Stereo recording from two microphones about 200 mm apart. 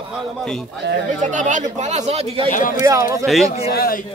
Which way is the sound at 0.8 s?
60° right (ahead or behind).